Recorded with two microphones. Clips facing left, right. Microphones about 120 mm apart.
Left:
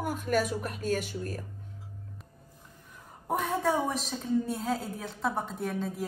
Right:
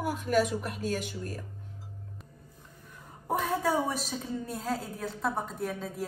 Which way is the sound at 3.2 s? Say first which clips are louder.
Even; centre (ahead or behind).